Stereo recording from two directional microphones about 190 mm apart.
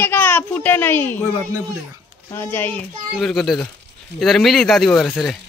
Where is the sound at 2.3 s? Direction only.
15° left (ahead or behind).